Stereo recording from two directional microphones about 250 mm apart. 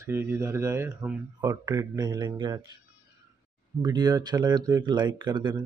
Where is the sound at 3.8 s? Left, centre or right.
Centre.